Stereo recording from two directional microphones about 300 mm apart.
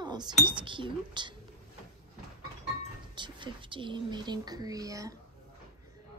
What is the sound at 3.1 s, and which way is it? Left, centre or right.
A woman's voice, centre.